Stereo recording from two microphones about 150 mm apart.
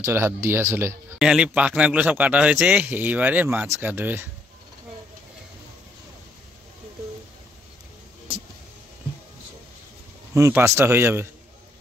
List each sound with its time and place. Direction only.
0.0 s speech: 15° right (ahead or behind)
1.2 s speech: 5° right (ahead or behind)
10.3 s speech: 20° right (ahead or behind)